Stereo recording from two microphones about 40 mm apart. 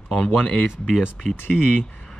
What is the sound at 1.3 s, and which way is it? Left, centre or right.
Speech, left.